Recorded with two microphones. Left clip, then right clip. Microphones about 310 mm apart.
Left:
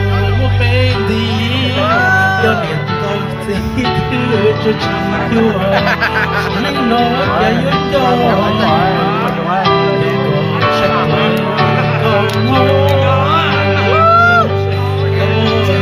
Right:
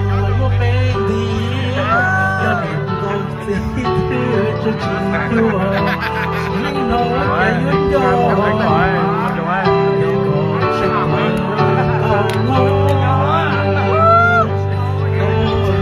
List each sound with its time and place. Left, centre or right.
2.0 s music: centre
6.9 s music: right
14.1 s music: right